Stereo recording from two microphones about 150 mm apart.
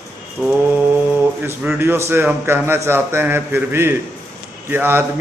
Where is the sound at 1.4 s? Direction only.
10° right (ahead or behind).